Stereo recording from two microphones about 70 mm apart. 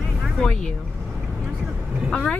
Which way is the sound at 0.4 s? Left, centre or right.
Centre.